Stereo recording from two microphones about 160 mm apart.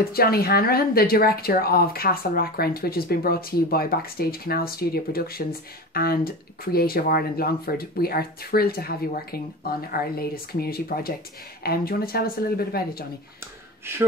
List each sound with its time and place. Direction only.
0.1 s speech: 70° left (ahead or behind)